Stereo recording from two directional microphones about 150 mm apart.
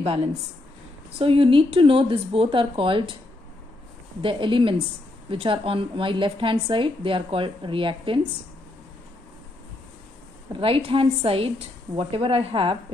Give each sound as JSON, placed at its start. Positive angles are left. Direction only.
{"t": 1.1, "sound": "a woman's voice", "side_deg": -35}
{"t": 4.2, "sound": "a woman's voice", "side_deg": -35}
{"t": 10.5, "sound": "a woman's voice", "side_deg": -35}